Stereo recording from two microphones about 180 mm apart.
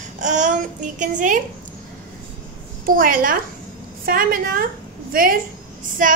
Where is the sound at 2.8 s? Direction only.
50° right (ahead or behind).